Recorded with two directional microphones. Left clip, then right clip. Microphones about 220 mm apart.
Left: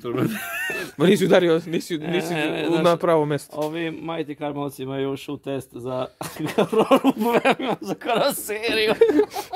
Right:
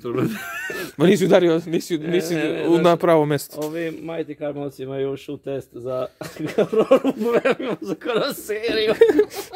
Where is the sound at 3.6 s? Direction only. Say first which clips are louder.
Even; 45° left (ahead or behind).